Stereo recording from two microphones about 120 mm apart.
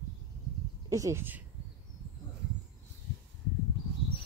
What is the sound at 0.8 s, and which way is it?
Speech, 30° right (ahead or behind).